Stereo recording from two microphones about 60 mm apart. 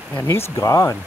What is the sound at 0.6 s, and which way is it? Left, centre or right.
Speech, left.